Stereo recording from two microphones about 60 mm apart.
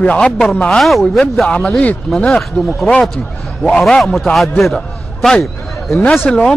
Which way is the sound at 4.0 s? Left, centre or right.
Centre.